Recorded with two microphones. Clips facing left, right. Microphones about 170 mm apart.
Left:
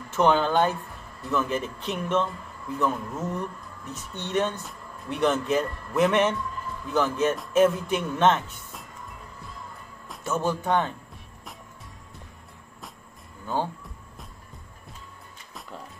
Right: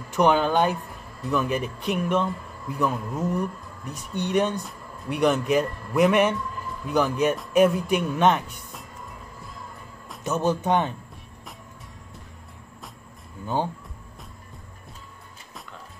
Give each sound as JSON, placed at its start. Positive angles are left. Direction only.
{"t": 0.1, "sound": "speech", "side_deg": -15}
{"t": 10.2, "sound": "a man's voice", "side_deg": -20}